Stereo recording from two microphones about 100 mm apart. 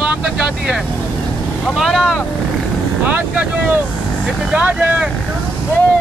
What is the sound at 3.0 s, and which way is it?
Speech, 20° right (ahead or behind).